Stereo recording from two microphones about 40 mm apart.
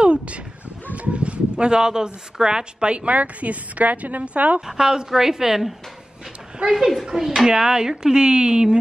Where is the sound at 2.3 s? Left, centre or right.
Centre; by 4.6 s right.